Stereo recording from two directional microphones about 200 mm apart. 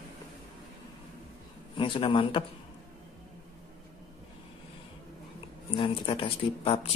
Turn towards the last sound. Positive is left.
turn(degrees=30)  # may be behind; listen again after turning